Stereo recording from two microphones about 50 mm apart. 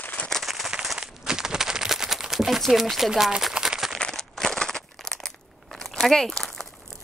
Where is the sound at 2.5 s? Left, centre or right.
Centre.